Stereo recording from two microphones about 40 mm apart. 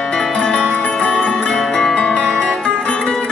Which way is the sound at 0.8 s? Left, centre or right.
Left.